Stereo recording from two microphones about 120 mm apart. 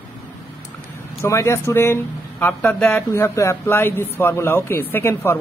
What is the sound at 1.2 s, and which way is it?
Speech, 25° left (ahead or behind).